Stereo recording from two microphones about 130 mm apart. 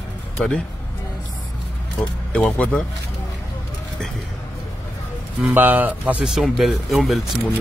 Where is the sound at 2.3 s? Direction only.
10° left (ahead or behind).